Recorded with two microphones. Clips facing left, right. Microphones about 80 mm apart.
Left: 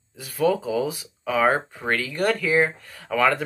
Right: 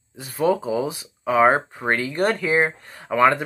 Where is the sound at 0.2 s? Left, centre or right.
Right.